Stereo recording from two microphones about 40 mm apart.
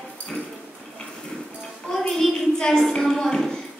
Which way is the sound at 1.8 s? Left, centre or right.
Centre.